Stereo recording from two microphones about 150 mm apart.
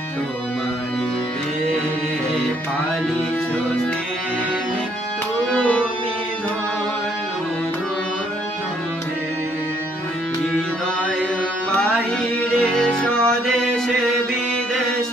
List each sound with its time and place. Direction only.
5.5 s music: 10° left (ahead or behind)
12.5 s music: 5° left (ahead or behind)